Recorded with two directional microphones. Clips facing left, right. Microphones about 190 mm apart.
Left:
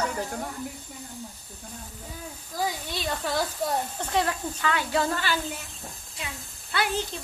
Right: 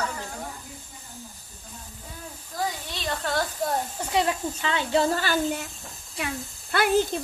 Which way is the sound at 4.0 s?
10° right (ahead or behind).